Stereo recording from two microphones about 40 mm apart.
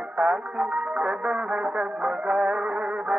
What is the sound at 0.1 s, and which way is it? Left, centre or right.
Music, right.